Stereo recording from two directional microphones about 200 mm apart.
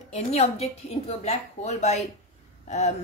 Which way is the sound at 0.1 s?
30° left (ahead or behind).